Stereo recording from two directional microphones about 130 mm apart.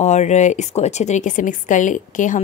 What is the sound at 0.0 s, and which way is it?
Speech, 60° left (ahead or behind).